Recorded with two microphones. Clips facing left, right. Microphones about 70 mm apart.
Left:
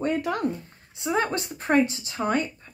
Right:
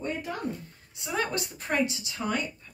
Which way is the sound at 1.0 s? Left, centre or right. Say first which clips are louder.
Left 5 dB; left.